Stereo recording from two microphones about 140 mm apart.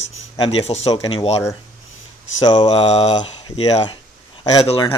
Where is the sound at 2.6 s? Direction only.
45° left (ahead or behind).